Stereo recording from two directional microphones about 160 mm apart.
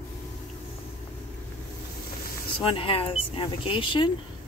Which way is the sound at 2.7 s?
35° left (ahead or behind).